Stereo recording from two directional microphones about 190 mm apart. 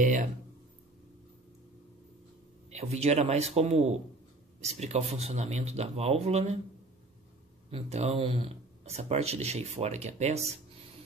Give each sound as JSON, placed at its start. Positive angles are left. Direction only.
{"t": 0.0, "sound": "speech", "side_deg": -40}
{"t": 2.7, "sound": "speech", "side_deg": -35}
{"t": 7.7, "sound": "speech", "side_deg": -35}